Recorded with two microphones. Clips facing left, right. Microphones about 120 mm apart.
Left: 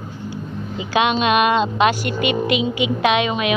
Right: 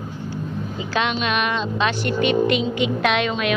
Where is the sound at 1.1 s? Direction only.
20° left (ahead or behind).